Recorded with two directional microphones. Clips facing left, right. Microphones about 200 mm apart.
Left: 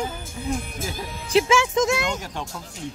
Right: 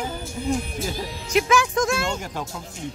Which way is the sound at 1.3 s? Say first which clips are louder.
Left 1 dB; 25° left (ahead or behind).